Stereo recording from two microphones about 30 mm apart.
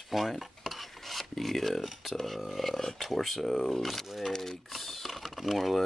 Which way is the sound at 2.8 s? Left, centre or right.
Centre.